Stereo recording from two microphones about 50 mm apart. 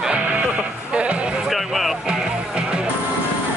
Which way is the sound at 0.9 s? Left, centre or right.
Right.